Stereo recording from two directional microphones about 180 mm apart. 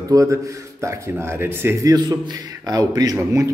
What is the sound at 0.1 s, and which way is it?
Speech, 15° right (ahead or behind).